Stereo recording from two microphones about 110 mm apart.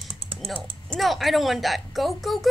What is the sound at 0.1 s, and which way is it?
Typing, 65° right (ahead or behind).